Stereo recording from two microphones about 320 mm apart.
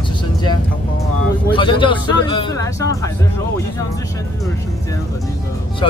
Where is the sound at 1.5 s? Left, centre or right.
Centre.